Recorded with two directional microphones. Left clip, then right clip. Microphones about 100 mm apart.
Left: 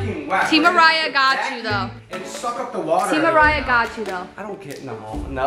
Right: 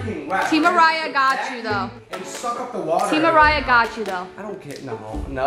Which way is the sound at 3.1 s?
10° right (ahead or behind).